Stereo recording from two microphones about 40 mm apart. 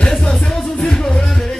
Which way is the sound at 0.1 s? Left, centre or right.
Centre.